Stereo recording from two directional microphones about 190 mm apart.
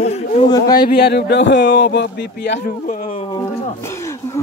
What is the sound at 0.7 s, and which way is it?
Speech, 55° left (ahead or behind).